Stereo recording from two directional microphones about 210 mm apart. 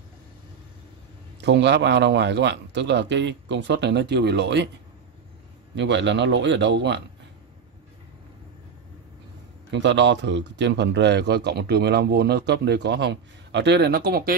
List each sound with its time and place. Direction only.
1.4 s a man's voice: 55° right (ahead or behind)
5.8 s a man's voice: 60° right (ahead or behind)
9.7 s speech: 55° right (ahead or behind)